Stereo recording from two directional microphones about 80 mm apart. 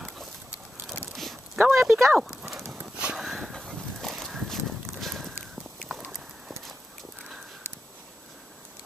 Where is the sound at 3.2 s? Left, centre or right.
Centre.